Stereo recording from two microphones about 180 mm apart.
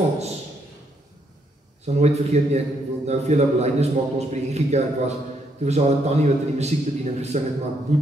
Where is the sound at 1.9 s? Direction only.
40° right (ahead or behind).